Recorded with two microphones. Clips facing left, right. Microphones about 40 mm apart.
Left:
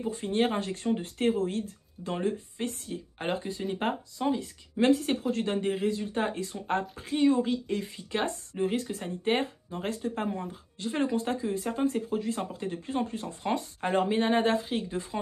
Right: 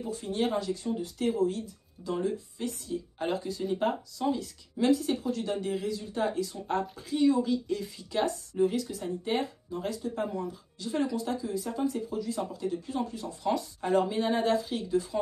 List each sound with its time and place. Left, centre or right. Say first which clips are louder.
0.1 s speech: left 1 dB; left
4.7 s speech: left 2 dB; left